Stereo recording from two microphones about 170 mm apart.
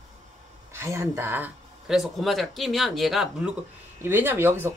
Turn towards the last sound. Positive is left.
turn(degrees=-15)  # may be behind; listen again after turning